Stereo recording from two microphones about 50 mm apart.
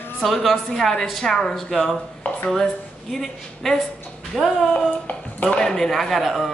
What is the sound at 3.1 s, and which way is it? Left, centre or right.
A woman's voice, centre.